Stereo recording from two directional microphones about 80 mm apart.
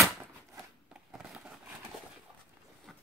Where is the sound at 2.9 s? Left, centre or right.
Centre.